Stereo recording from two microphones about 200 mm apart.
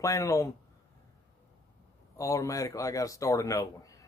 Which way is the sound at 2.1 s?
15° left (ahead or behind).